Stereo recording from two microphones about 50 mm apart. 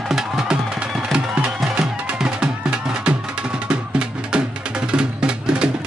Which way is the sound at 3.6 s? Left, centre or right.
Centre.